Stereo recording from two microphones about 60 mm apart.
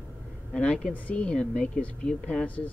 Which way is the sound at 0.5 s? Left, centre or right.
Centre.